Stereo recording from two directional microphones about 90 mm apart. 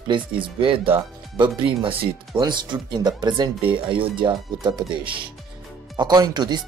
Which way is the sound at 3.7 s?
70° right (ahead or behind).